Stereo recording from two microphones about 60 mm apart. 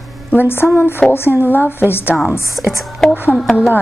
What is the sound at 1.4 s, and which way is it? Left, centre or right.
Speech, left.